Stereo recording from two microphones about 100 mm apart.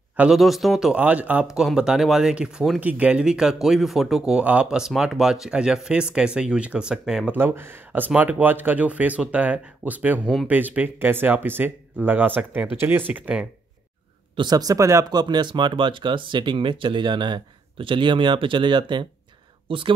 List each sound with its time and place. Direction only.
0.2 s speech: 5° right (ahead or behind)
0.9 s speech: 15° right (ahead or behind)
7.3 s speech: 20° right (ahead or behind)
14.3 s speech: 45° right (ahead or behind)
15.0 s speech: 45° right (ahead or behind)
19.7 s speech: 65° right (ahead or behind)